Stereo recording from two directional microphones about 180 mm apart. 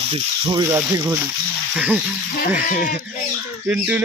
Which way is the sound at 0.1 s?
25° right (ahead or behind).